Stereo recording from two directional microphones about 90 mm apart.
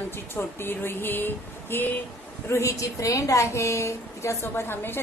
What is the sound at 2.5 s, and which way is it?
A woman's voice, 35° left (ahead or behind).